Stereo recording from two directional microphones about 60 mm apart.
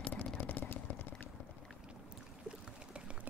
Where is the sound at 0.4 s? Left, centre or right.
Left.